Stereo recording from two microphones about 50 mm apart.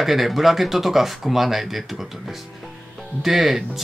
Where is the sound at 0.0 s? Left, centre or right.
Centre.